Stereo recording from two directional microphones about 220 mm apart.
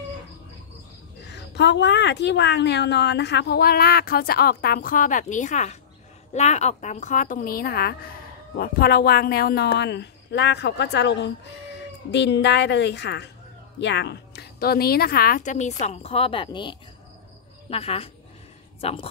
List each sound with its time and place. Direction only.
1.3 s a woman's voice: 50° left (ahead or behind); by 19.0 s 25° left (ahead or behind)